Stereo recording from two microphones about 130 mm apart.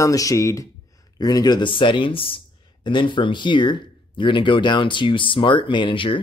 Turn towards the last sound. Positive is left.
turn(degrees=40)  # may be behind; listen again after turning